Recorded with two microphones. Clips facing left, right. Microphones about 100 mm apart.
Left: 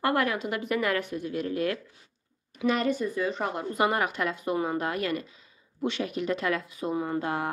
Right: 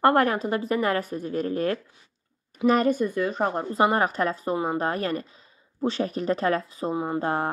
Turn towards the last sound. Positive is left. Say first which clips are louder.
# right 3 dB
turn(degrees=-35)  # may be behind; listen again after turning